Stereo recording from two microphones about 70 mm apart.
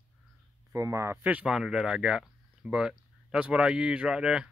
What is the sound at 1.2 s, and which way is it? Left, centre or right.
Speech, right.